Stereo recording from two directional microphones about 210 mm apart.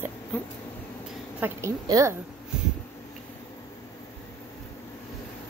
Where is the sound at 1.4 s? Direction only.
15° right (ahead or behind).